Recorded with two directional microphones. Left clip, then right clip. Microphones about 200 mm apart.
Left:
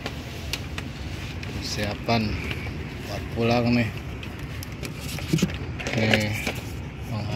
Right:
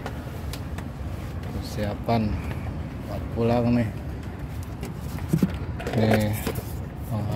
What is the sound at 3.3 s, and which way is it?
Speech, 5° right (ahead or behind).